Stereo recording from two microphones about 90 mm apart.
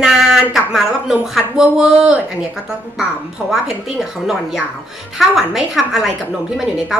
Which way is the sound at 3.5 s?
5° right (ahead or behind).